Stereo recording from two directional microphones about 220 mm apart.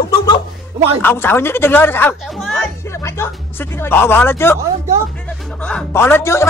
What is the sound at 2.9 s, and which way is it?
Speech, 10° left (ahead or behind).